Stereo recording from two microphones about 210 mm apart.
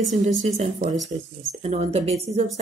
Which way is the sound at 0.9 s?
Centre (ahead or behind).